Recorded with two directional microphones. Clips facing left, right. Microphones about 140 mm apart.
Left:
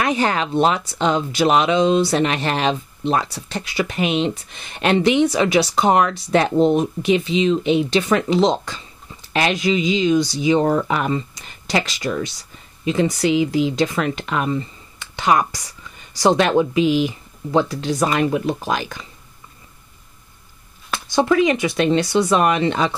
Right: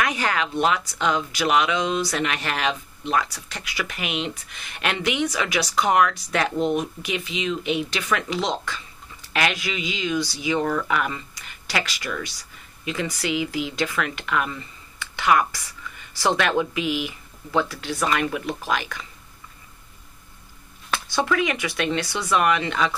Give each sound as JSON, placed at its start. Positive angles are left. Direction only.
{"t": 0.0, "sound": "speech", "side_deg": 30}
{"t": 21.1, "sound": "speech", "side_deg": 30}